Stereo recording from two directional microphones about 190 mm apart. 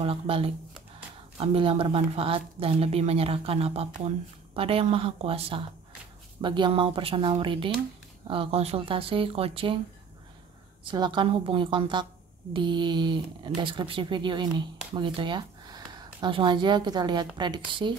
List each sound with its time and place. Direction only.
0.0 s speech: 30° right (ahead or behind)
10.8 s speech: 25° right (ahead or behind)